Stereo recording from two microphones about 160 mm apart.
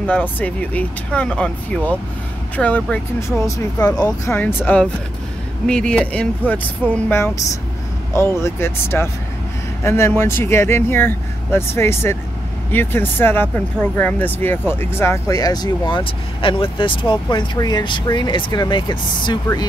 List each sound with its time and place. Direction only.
0.0 s speech: 10° left (ahead or behind)
5.7 s speech: 5° left (ahead or behind); by 19.6 s 30° left (ahead or behind)